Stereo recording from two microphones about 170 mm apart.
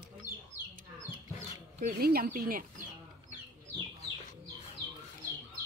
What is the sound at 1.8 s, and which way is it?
Speech, 60° right (ahead or behind).